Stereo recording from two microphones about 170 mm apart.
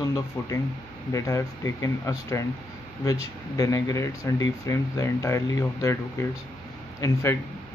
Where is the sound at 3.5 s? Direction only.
20° left (ahead or behind).